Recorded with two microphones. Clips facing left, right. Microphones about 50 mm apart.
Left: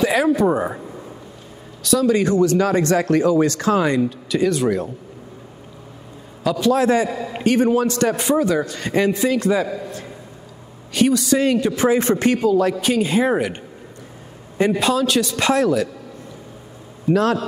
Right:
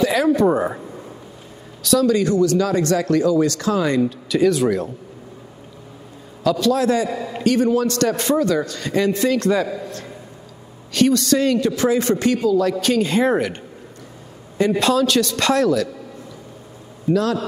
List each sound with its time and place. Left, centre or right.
0.0 s a sound: centre
0.3 s speech: centre
1.8 s a sound: centre
2.0 s speech: left
4.0 s speech: centre
6.6 s speech: left
7.1 s a man's voice: centre
7.3 s a man's voice: left
12.8 s a man's voice: centre
14.7 s a man's voice: centre
17.1 s a man's voice: left